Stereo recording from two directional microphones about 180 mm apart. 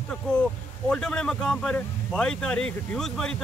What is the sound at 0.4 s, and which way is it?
Speech, 5° left (ahead or behind).